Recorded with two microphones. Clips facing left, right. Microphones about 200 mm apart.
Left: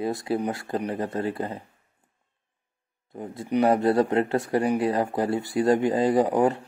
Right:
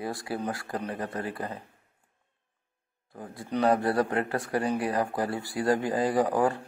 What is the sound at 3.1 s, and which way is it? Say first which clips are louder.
Speech: left 6 dB; 25° left (ahead or behind).